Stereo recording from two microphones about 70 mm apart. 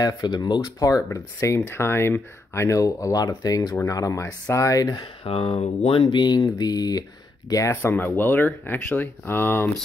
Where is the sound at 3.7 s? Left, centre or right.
Left.